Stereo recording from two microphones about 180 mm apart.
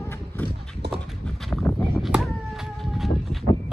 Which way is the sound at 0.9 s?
5° left (ahead or behind).